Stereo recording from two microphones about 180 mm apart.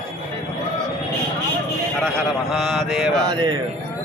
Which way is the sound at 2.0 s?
Centre (ahead or behind).